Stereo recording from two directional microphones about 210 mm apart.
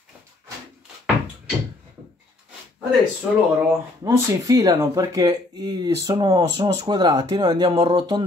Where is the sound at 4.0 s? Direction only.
15° right (ahead or behind).